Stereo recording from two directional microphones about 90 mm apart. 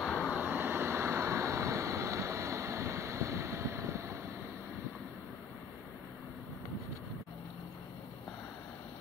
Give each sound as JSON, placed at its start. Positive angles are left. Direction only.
{"t": 0.0, "sound": "vehicle", "side_deg": 10}
{"t": 0.3, "sound": "vehicle", "side_deg": -20}